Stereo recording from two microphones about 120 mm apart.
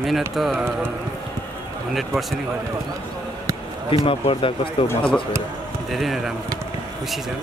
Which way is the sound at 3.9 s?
50° left (ahead or behind).